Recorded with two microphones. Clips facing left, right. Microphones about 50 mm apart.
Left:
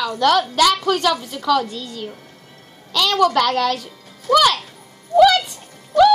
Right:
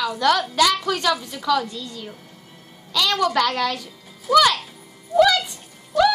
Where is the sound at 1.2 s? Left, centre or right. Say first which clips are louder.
Left 3 dB; left.